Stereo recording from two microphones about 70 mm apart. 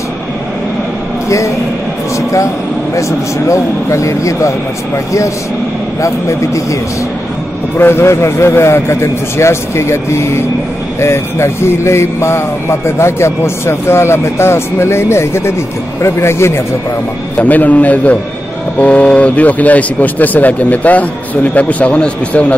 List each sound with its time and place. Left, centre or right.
2.1 s a man's voice: left
7.8 s speech: left
17.4 s a man's voice: left